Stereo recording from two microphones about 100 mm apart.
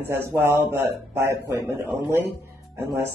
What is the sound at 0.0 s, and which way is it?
Speech, 25° right (ahead or behind).